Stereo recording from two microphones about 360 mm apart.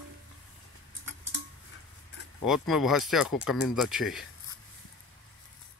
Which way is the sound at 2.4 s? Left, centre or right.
Centre.